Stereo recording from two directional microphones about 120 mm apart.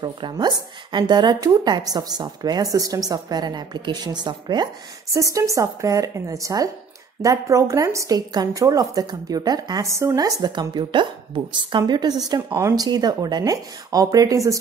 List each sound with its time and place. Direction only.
0.0 s a woman's voice: 40° right (ahead or behind)
5.1 s a woman's voice: 25° right (ahead or behind)